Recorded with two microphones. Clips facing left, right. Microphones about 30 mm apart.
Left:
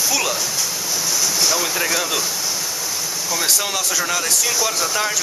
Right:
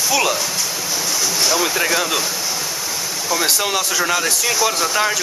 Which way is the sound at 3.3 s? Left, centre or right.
Centre.